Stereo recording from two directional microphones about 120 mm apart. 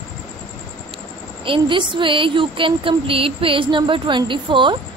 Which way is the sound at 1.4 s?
45° right (ahead or behind).